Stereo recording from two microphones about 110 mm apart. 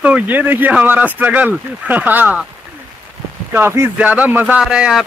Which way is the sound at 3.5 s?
20° right (ahead or behind).